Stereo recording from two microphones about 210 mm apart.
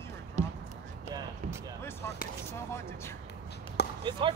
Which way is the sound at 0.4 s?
35° right (ahead or behind).